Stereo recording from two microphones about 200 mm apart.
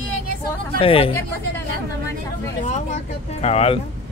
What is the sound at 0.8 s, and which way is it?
Speech, 30° left (ahead or behind).